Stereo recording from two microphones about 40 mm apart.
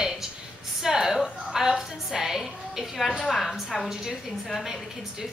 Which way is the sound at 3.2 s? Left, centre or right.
Centre.